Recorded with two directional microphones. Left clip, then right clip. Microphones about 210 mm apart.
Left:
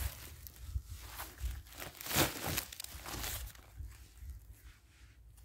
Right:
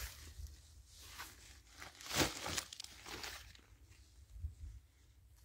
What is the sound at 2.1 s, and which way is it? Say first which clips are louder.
Crumpling: left 3 dB; 10° left (ahead or behind).